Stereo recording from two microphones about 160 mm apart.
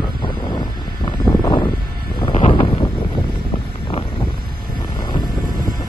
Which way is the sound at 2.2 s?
30° left (ahead or behind).